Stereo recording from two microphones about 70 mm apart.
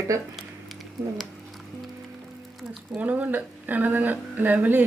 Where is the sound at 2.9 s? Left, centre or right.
Right.